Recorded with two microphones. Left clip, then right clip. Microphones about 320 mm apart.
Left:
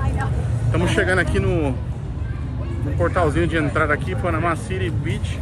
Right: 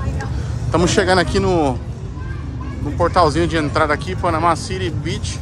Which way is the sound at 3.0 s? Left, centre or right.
Centre.